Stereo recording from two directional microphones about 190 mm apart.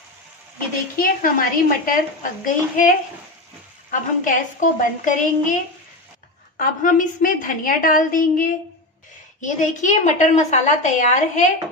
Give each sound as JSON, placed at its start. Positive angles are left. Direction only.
{"t": 0.9, "sound": "a woman's voice", "side_deg": 50}
{"t": 3.9, "sound": "a woman's voice", "side_deg": 45}